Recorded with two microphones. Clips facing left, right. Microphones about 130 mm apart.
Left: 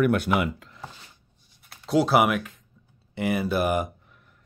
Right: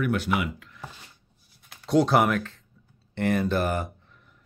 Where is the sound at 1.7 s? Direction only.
5° left (ahead or behind).